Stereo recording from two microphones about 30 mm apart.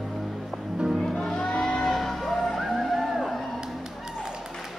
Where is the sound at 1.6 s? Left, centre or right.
Left.